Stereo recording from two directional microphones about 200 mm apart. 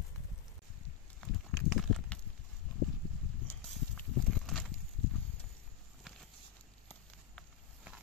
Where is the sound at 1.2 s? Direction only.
Centre (ahead or behind).